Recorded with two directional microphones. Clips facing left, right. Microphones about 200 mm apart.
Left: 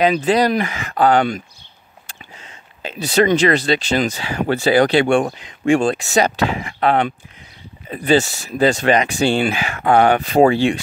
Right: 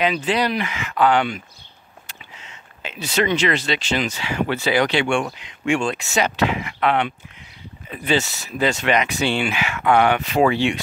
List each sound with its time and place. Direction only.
0.0 s speech: 40° left (ahead or behind)